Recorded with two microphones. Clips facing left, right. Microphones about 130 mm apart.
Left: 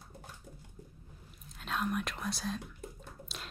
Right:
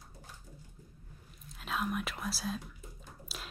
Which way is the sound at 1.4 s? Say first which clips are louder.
Left 1 dB; centre (ahead or behind).